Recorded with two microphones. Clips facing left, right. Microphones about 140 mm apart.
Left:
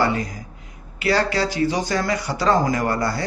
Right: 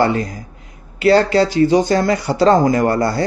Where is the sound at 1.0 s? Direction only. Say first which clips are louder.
Right 8 dB; 25° right (ahead or behind).